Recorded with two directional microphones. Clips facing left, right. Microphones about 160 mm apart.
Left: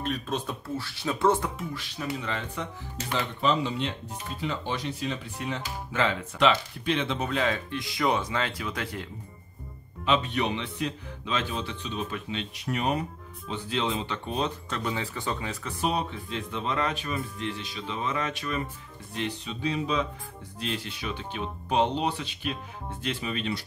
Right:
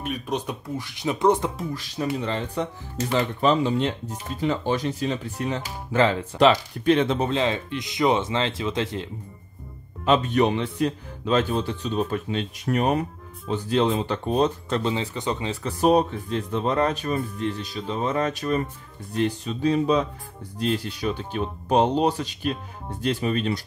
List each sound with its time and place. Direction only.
0.0 s speech: 15° right (ahead or behind)
1.6 s speech: 40° right (ahead or behind)
3.3 s speech: 45° right (ahead or behind)
7.2 s speech: 25° right (ahead or behind)
10.0 s speech: 45° right (ahead or behind)
14.8 s speech: 20° right (ahead or behind)
15.6 s speech: 45° right (ahead or behind)